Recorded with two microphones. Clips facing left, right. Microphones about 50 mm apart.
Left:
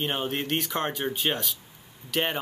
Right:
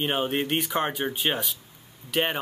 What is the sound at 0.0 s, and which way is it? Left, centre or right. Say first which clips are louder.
Speech: right 3 dB; centre.